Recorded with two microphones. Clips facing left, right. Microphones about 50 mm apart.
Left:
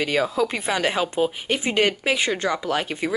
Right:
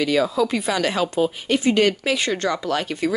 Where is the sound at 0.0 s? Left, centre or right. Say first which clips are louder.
Right 2 dB; left.